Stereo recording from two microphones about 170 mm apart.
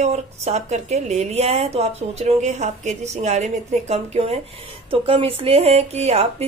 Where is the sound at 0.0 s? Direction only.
40° right (ahead or behind).